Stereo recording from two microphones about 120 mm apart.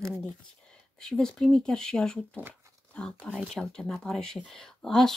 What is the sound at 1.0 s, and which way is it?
Speech, 5° left (ahead or behind).